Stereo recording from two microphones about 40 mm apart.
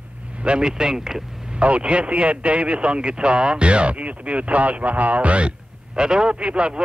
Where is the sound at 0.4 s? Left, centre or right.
Right.